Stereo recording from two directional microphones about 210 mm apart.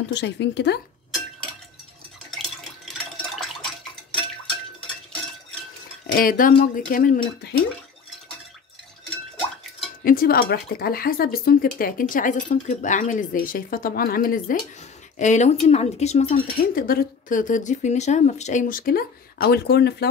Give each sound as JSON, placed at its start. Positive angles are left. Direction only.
{"t": 0.1, "sound": "speech", "side_deg": 55}
{"t": 2.3, "sound": "water", "side_deg": 0}
{"t": 6.0, "sound": "speech", "side_deg": 45}
{"t": 10.0, "sound": "speech", "side_deg": 45}